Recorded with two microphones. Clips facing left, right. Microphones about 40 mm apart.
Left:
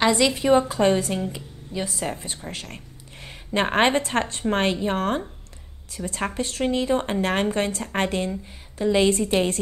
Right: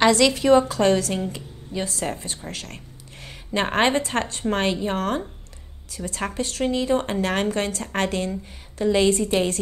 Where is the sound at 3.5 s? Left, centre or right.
Left.